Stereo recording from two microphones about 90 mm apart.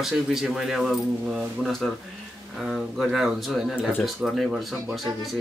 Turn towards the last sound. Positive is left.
turn(degrees=0)  # may be behind; listen again after turning